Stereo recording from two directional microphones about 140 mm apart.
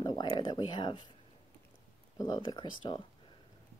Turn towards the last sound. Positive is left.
turn(degrees=35)  # may be behind; listen again after turning